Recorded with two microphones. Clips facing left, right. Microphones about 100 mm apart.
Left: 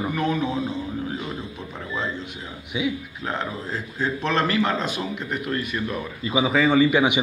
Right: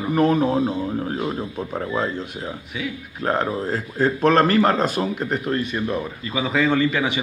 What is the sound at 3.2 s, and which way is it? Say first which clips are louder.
Speech: right 7 dB; 40° right (ahead or behind).